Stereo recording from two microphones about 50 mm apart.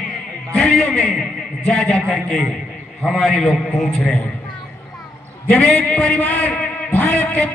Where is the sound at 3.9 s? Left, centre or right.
Left.